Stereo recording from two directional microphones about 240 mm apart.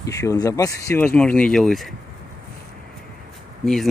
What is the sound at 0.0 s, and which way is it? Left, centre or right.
Speech, centre.